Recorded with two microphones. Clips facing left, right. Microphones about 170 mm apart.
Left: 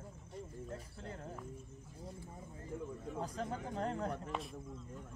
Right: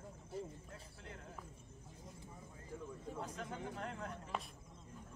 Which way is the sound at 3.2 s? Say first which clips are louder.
Left 5 dB; 35° left (ahead or behind).